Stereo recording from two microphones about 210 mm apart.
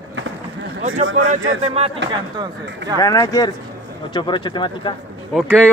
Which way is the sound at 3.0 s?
15° left (ahead or behind).